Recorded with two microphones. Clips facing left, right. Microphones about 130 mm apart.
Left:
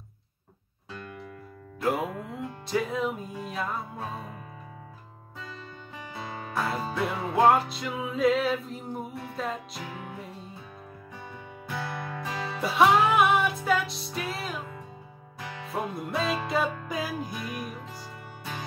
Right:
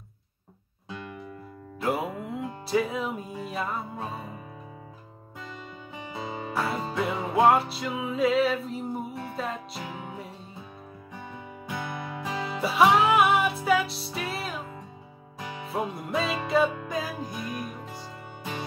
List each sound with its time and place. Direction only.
1.8 s music: centre (ahead or behind)
6.1 s music: 20° right (ahead or behind)
6.5 s music: centre (ahead or behind)
11.6 s music: 10° right (ahead or behind)
16.0 s music: 5° right (ahead or behind)